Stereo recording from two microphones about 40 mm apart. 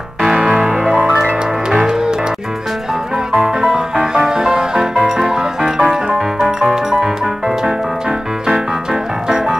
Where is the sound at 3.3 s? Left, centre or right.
Centre.